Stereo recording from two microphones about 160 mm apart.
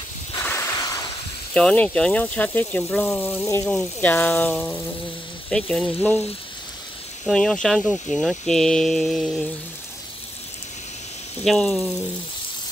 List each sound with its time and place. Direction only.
0.4 s a sound: 15° left (ahead or behind)
1.5 s speech: 5° left (ahead or behind)
7.2 s speech: 5° left (ahead or behind)
11.4 s speech: centre (ahead or behind)